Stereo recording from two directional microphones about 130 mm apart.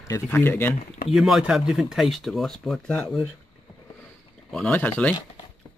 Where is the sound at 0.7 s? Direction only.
70° left (ahead or behind).